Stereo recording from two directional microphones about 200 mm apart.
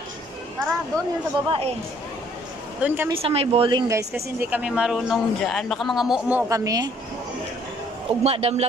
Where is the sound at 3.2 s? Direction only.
30° right (ahead or behind).